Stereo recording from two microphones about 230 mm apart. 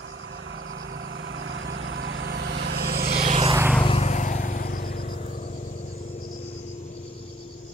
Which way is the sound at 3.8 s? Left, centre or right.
Left.